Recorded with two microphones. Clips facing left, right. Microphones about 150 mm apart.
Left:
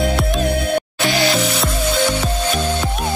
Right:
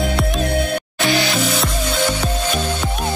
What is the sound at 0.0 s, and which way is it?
Music, centre (ahead or behind).